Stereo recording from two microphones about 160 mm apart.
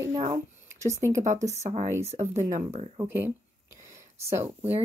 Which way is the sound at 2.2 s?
45° right (ahead or behind).